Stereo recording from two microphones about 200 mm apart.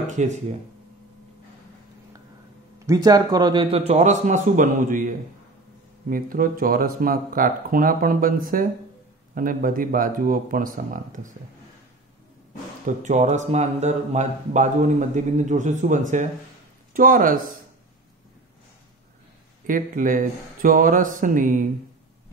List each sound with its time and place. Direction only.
0.0 s speech: 35° right (ahead or behind)
2.9 s speech: 20° right (ahead or behind); by 11.3 s 40° right (ahead or behind)
12.8 s speech: 35° right (ahead or behind)
19.6 s speech: 40° right (ahead or behind)